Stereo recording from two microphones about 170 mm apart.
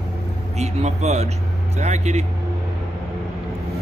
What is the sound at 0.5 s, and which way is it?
Speech, 40° right (ahead or behind).